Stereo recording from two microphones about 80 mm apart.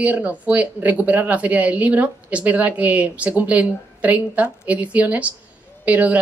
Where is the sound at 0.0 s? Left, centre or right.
Centre.